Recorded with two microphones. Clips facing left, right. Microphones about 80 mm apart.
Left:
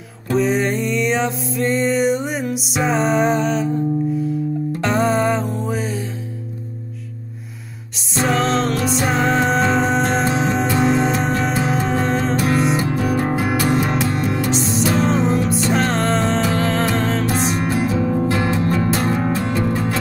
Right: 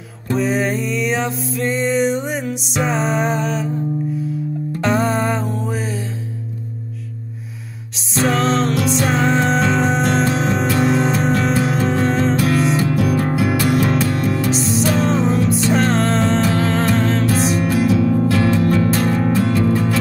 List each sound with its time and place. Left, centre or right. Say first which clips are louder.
0.3 s music: left 1 dB; centre
4.8 s music: even; centre
8.1 s music: right 1 dB; centre
12.7 s music: right 2 dB; left
14.5 s music: right 1 dB; centre
17.6 s music: right 3 dB; left